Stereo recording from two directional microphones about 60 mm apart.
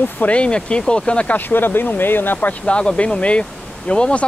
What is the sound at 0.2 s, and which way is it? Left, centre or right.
Speech, centre.